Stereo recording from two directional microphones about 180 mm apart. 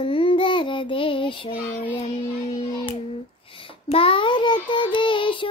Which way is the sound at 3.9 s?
30° left (ahead or behind).